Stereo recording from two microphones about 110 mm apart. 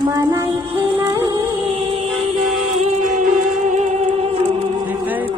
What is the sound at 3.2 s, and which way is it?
Music, 90° right.